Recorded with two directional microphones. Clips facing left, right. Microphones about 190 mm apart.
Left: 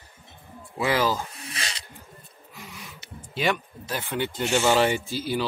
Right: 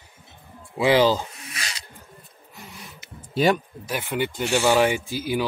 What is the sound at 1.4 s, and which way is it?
Snake, 30° left (ahead or behind).